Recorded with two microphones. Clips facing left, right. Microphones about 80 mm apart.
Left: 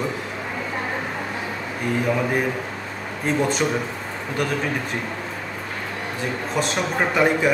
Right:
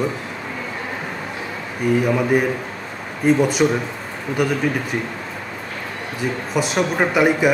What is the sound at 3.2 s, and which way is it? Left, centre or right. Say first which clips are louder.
Speech: right 6 dB; centre.